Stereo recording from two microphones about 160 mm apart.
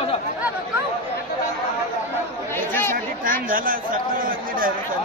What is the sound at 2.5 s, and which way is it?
Chatter, 15° left (ahead or behind).